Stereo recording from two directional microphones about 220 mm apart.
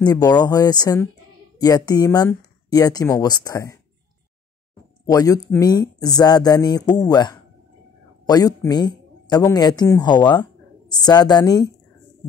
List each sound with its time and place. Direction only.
0.0 s speech: 15° left (ahead or behind)
5.0 s a woman's voice: 15° left (ahead or behind)